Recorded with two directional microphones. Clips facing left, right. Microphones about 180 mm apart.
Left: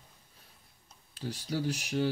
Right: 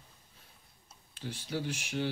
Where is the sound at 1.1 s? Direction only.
40° left (ahead or behind).